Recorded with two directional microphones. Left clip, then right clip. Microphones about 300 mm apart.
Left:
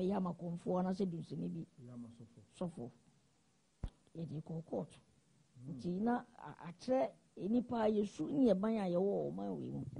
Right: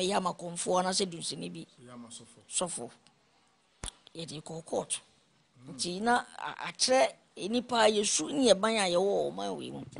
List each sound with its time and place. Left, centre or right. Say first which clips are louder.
0.0 s a woman's voice: right 10 dB; centre
0.3 s speech: right 9 dB; right
0.7 s a woman's voice: right 11 dB; centre
3.8 s a sound: right 9 dB; centre
4.5 s speech: right 9 dB; right
5.8 s a woman's voice: right 11 dB; centre
9.0 s speech: right 8 dB; right